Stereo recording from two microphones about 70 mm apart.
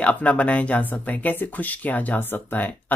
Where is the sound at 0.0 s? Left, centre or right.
Centre.